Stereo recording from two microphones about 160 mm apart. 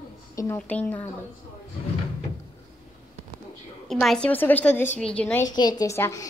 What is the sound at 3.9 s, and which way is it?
A child's voice, centre (ahead or behind).